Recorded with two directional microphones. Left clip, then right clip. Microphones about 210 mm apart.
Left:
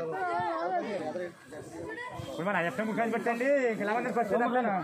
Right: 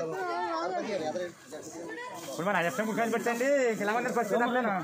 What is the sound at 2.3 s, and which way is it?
Speech, 5° right (ahead or behind).